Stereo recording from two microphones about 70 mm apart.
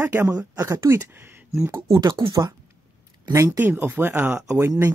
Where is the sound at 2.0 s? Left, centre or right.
Right.